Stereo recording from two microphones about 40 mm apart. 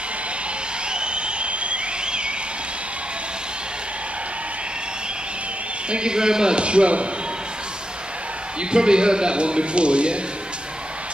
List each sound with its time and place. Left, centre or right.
0.9 s a sound: right
5.9 s speech: right
8.5 s speech: right